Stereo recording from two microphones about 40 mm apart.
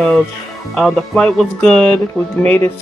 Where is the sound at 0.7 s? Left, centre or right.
Centre.